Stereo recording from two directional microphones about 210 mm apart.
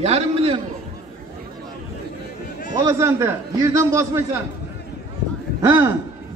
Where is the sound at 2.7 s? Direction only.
15° right (ahead or behind).